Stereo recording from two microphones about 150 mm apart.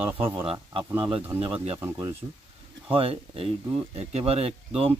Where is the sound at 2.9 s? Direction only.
40° right (ahead or behind).